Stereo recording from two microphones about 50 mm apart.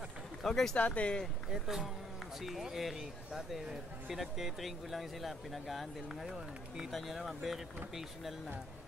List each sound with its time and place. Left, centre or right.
0.4 s speech: centre
0.7 s speech: left
1.5 s speech: centre